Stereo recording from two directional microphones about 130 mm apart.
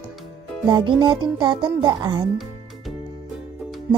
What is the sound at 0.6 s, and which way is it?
A child's voice, 35° right (ahead or behind).